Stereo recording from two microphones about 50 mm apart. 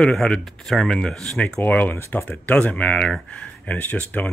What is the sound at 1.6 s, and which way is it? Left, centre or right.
Speech, left.